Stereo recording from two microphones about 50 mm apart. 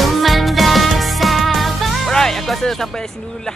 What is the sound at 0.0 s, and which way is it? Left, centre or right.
Music, centre.